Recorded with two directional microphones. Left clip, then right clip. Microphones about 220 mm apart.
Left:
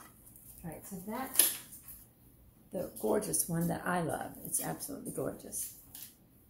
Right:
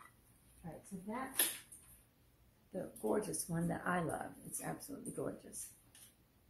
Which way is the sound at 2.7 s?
15° left (ahead or behind).